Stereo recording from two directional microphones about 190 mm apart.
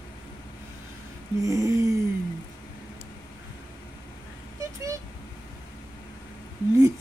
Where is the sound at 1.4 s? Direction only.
15° right (ahead or behind).